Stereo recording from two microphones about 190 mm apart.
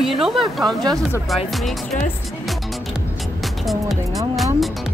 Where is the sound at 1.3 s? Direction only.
Centre (ahead or behind).